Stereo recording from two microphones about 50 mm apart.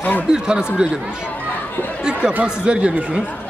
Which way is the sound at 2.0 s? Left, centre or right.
Centre.